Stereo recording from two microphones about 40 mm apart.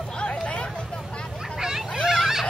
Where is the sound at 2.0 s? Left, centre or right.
Centre.